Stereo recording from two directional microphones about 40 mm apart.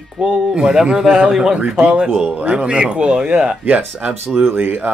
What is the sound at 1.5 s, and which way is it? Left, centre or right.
Speech, right.